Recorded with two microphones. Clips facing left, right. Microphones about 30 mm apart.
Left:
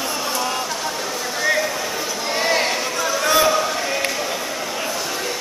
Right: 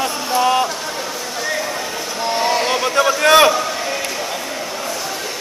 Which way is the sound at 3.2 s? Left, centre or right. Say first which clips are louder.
Right 6 dB; right.